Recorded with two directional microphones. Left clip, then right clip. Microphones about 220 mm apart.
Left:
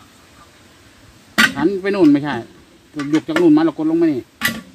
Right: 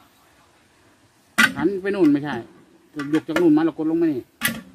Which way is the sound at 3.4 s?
25° left (ahead or behind).